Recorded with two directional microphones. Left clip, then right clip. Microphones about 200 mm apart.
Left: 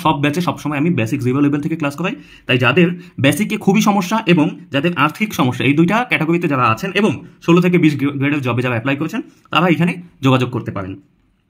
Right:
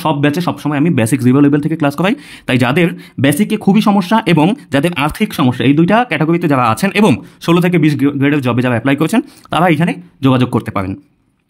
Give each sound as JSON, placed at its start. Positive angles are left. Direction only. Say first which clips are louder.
{"t": 0.0, "sound": "speech", "louder": "right 2 dB", "side_deg": -25}
{"t": 0.9, "sound": "speech", "louder": "right 6 dB", "side_deg": -40}
{"t": 3.2, "sound": "speech", "louder": "right 2 dB", "side_deg": -30}
{"t": 4.2, "sound": "speech", "louder": "right 3 dB", "side_deg": -45}
{"t": 6.5, "sound": "speech", "louder": "right 3 dB", "side_deg": -45}
{"t": 10.5, "sound": "speech", "louder": "right 7 dB", "side_deg": -45}